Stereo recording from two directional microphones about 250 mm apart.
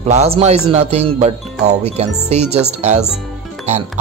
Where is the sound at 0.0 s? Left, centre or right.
Right.